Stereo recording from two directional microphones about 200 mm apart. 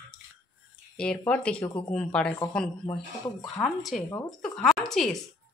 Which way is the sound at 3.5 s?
Centre (ahead or behind).